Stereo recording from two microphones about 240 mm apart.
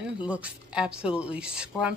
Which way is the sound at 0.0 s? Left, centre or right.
Centre.